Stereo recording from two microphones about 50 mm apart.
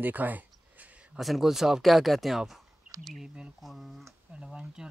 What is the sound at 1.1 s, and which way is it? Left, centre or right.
Speech, centre.